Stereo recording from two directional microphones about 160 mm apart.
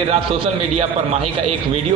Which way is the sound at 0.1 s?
40° right (ahead or behind).